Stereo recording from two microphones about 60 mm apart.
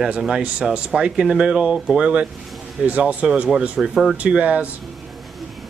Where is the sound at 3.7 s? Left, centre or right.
Centre.